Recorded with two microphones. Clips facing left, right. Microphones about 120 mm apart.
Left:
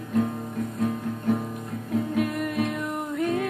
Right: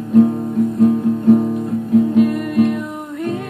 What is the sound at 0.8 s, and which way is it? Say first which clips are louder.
Music: right 14 dB; 25° right (ahead or behind).